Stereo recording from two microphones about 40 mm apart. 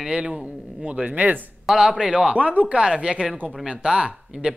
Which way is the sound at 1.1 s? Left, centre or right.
Right.